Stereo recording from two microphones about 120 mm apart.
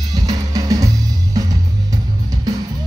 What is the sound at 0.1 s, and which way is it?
Drum kit, 30° right (ahead or behind).